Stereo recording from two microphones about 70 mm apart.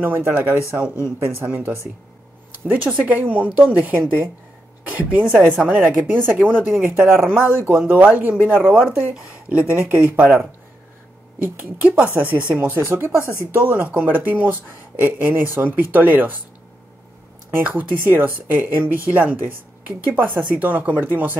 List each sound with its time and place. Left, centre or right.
0.0 s speech: right; by 6.0 s centre
6.0 s speech: right
8.7 s speech: centre
13.5 s speech: right
17.6 s speech: right